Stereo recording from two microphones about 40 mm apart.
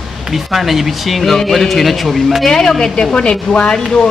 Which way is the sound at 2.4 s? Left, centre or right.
Centre.